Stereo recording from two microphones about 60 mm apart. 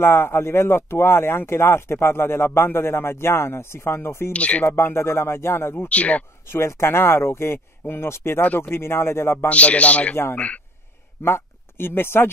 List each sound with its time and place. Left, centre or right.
0.0 s speech: left
4.3 s speech: left
4.7 s speech: left
5.9 s speech: left
6.5 s speech: left
8.4 s speech: left
9.5 s speech: left
11.2 s speech: left